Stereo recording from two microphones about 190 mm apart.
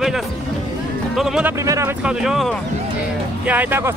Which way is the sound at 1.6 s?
15° right (ahead or behind).